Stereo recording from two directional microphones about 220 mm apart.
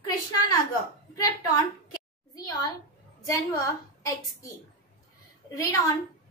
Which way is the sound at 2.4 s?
15° left (ahead or behind).